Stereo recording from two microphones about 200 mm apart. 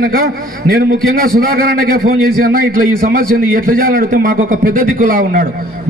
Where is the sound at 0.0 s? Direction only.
45° right (ahead or behind).